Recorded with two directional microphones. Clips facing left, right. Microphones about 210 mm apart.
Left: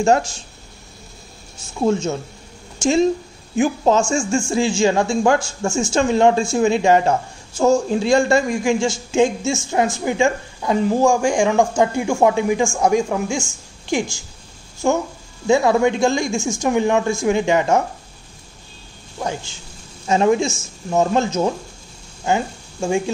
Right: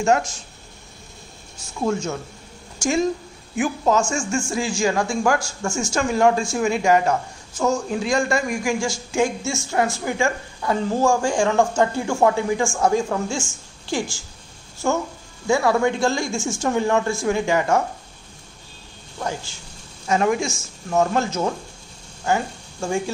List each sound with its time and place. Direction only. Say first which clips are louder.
0.0 s speech: left 3 dB; 30° left (ahead or behind)
1.8 s a woman's voice: left 4 dB; 25° left (ahead or behind)
19.1 s a woman's voice: left 2 dB; 20° left (ahead or behind)